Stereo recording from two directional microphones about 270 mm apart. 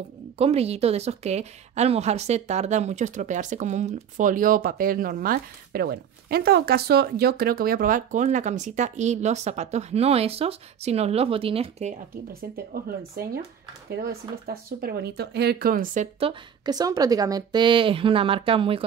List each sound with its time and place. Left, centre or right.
0.4 s a woman's voice: right
12.7 s speech: right
14.0 s a woman's voice: right